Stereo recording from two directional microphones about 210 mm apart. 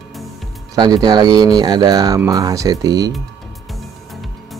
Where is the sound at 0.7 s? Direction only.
20° right (ahead or behind).